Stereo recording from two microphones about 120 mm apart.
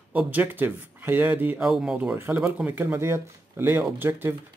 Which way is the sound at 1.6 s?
5° right (ahead or behind).